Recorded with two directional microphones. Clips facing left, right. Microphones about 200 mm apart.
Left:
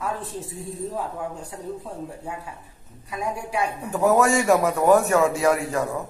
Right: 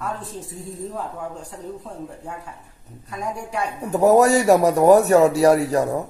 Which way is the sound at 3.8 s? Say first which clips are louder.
Right 5 dB; 40° right (ahead or behind).